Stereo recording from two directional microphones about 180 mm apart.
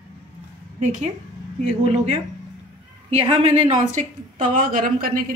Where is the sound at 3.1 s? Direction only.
35° right (ahead or behind).